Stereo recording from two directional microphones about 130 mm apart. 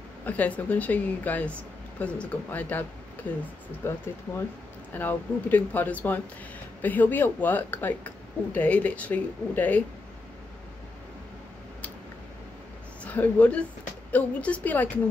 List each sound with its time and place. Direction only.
0.2 s a woman's voice: 10° left (ahead or behind)
13.0 s a woman's voice: 10° left (ahead or behind)